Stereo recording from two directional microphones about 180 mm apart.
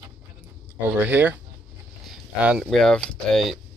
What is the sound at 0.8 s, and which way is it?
Speech, 10° right (ahead or behind).